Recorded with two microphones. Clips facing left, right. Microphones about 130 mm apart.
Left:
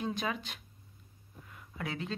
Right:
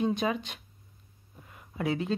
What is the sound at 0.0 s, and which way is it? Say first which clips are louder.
Speech: right 7 dB; 20° right (ahead or behind).